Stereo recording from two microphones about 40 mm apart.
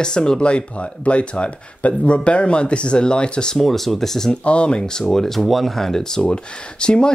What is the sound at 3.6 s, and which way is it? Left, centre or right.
Speech, centre.